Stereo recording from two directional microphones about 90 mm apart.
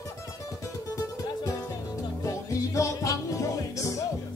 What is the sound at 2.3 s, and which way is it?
Music, 35° left (ahead or behind).